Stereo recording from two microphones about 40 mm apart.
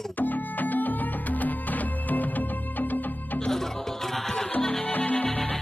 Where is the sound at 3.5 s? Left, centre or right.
Centre.